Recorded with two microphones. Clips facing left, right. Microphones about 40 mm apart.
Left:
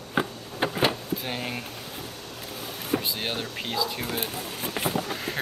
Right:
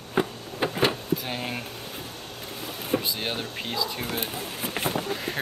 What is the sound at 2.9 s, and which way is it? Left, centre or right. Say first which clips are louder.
Vehicle: right 1 dB; centre.